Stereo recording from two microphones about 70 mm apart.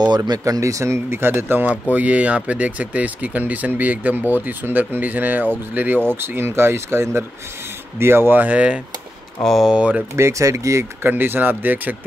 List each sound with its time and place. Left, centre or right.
0.0 s speech: right
0.5 s speech: right
1.7 s speech: centre
9.4 s speech: centre
9.7 s speech: centre
10.1 s speech: right
11.1 s speech: right